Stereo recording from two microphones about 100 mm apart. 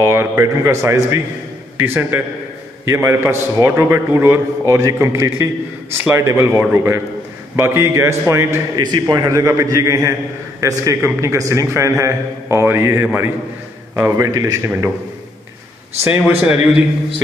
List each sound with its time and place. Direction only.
0.0 s a man's voice: 25° right (ahead or behind)
1.8 s a man's voice: 20° right (ahead or behind)
8.7 s a man's voice: 45° right (ahead or behind)
16.0 s a man's voice: 20° right (ahead or behind)